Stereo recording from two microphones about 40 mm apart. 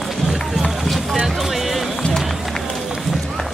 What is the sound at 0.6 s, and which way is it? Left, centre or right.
Run, centre.